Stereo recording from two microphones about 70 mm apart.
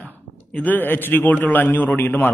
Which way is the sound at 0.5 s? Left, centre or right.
Left.